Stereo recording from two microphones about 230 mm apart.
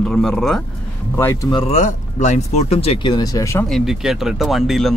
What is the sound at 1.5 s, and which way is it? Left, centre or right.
Speech, left.